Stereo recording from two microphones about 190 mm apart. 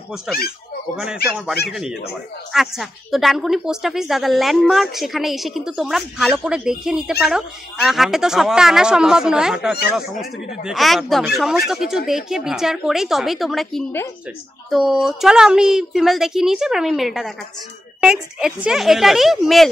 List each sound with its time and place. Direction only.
0.9 s a woman's voice: 5° right (ahead or behind)